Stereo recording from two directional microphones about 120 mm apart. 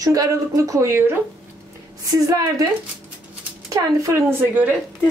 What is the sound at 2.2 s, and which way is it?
Speech, 30° right (ahead or behind).